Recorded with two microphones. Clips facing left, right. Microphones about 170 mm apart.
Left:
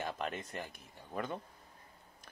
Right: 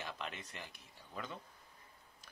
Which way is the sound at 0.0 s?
45° left (ahead or behind).